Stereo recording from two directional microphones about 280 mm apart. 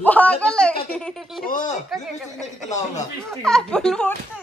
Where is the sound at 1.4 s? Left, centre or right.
Left.